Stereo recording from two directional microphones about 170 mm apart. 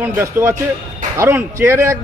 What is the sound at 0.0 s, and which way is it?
A man's voice, 15° right (ahead or behind).